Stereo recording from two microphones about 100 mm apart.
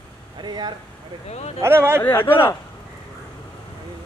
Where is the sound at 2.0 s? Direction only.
20° left (ahead or behind).